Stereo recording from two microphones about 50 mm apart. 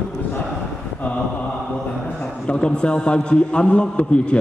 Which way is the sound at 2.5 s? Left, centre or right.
Left.